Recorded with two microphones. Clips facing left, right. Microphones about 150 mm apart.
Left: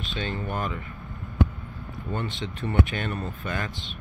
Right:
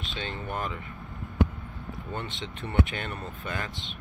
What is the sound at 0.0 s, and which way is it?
Speech, 20° right (ahead or behind).